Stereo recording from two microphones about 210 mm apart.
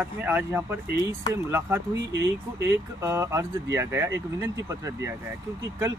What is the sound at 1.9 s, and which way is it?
Speech, 55° right (ahead or behind).